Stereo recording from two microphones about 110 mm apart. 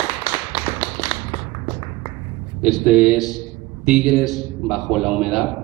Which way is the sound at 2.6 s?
5° right (ahead or behind).